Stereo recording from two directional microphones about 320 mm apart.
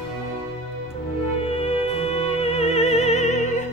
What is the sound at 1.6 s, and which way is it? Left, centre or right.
Music, centre.